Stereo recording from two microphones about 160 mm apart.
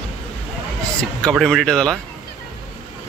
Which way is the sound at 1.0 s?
5° left (ahead or behind).